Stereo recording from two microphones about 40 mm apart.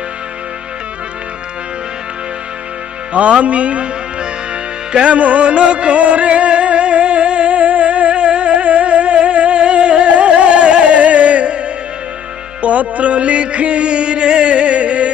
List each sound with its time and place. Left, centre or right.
3.1 s speech: right
5.0 s music: right
12.6 s a sound: right